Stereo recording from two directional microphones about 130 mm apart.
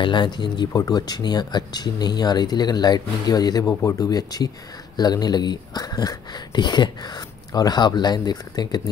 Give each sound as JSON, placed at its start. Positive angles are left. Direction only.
{"t": 0.0, "sound": "speech", "side_deg": 35}